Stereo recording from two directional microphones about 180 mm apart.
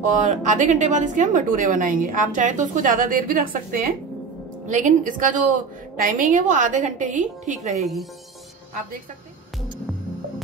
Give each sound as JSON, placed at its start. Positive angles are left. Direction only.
{"t": 0.0, "sound": "a woman's voice", "side_deg": -45}
{"t": 7.7, "sound": "a woman's voice", "side_deg": 0}